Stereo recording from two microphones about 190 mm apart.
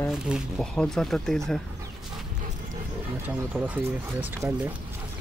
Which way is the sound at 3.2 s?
5° right (ahead or behind).